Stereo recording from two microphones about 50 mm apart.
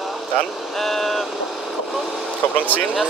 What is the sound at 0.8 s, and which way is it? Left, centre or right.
Vehicle, centre.